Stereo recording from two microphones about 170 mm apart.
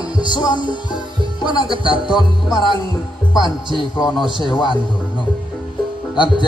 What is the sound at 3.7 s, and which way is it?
Music, 30° left (ahead or behind).